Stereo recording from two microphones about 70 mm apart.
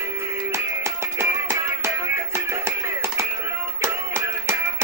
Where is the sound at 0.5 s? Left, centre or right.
Right.